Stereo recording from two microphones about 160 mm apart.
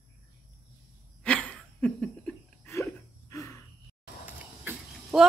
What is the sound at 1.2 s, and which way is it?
Laughter, 5° left (ahead or behind).